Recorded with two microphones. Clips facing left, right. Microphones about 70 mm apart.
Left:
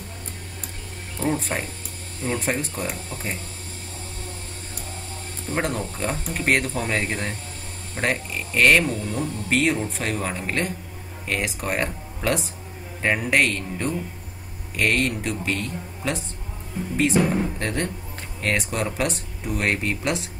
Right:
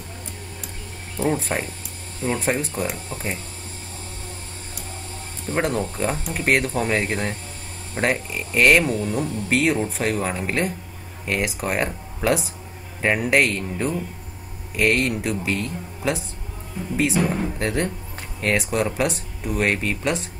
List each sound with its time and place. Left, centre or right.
1.1 s speech: centre
5.5 s speech: centre